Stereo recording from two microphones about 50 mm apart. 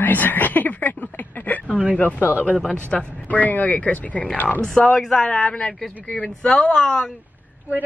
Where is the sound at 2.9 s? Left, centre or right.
Left.